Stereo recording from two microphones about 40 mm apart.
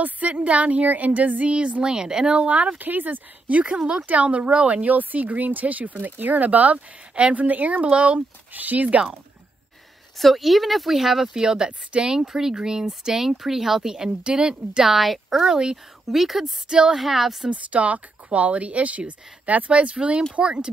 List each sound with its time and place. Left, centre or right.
0.0 s speech: right; by 2.3 s centre
2.3 s speech: right
2.8 s speech: right
4.8 s speech: right
5.9 s speech: right
10.1 s speech: centre
11.4 s speech: centre
14.9 s speech: centre
16.6 s speech: right
16.9 s speech: centre
17.5 s speech: right